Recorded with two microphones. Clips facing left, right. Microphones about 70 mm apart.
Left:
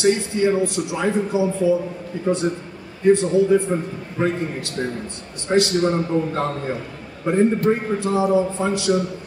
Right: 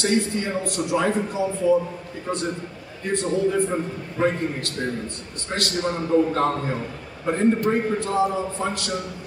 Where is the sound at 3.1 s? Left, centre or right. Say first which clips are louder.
Left 6 dB; centre.